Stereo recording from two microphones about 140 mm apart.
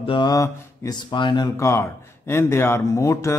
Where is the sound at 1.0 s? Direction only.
35° left (ahead or behind).